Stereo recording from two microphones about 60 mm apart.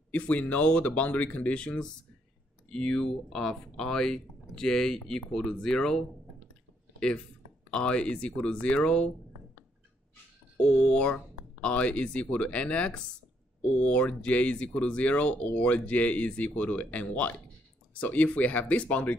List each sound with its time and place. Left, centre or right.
0.1 s speech: left
10.8 s speech: centre